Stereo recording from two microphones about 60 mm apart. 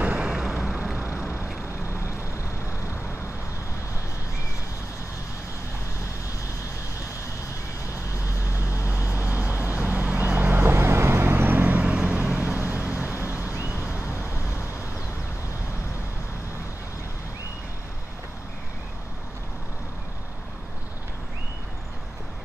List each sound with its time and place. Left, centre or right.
0.0 s vehicle: centre
8.3 s vehicle: left
8.8 s vehicle: right
12.5 s vehicle: right
12.8 s vehicle: right
13.5 s vehicle: right